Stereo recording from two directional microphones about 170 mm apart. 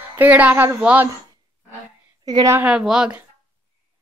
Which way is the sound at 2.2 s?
20° right (ahead or behind).